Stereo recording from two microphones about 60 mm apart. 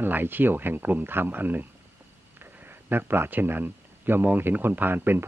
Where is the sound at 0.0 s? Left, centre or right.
Right.